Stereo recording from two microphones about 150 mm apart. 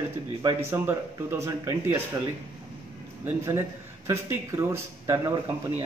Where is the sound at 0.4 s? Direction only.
20° right (ahead or behind).